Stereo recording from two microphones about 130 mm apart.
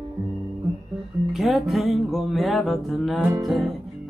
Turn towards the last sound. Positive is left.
turn(degrees=0)  # may be behind; listen again after turning